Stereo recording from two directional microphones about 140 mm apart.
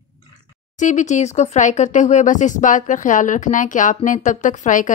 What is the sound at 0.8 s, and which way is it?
Speech, 60° left (ahead or behind).